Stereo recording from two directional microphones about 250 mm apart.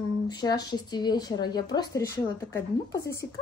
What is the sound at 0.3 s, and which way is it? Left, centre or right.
Speech, centre.